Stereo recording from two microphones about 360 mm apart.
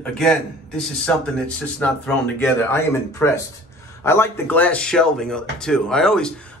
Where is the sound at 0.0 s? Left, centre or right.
Centre.